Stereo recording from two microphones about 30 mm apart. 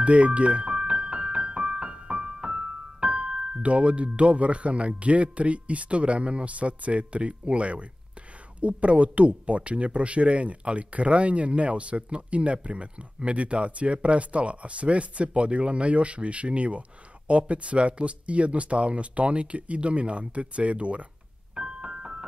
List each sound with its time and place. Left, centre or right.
0.0 s speech: right
0.7 s piano: right
3.6 s speech: right
21.5 s keyboard: right